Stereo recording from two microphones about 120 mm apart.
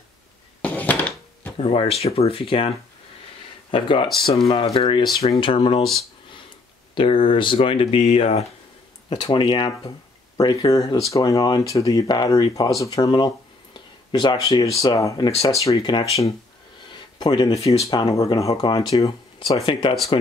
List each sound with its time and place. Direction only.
0.6 s a sound: 10° left (ahead or behind)
1.6 s speech: 60° left (ahead or behind)
3.7 s speech: 45° left (ahead or behind)
7.0 s speech: 45° left (ahead or behind)
8.0 s speech: 60° left (ahead or behind)
9.1 s speech: 40° left (ahead or behind)
15.8 s speech: 40° left (ahead or behind)
16.9 s a sound: 40° left (ahead or behind)
17.6 s speech: 30° left (ahead or behind)
18.6 s speech: 40° left (ahead or behind)
19.4 s speech: 50° left (ahead or behind)